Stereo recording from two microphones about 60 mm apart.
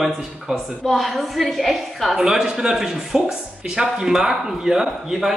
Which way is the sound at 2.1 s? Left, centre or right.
Centre.